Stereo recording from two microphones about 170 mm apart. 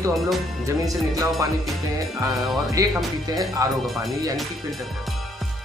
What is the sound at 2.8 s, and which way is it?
Speech, 20° right (ahead or behind).